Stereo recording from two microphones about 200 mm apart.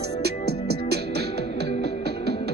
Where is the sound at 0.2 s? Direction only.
55° right (ahead or behind).